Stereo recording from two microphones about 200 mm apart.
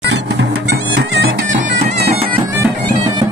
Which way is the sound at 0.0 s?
60° right (ahead or behind).